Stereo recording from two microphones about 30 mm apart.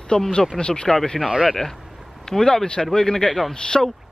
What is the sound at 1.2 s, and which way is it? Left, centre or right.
Speech, right.